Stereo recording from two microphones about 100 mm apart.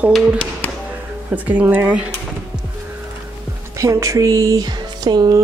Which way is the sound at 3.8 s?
30° right (ahead or behind).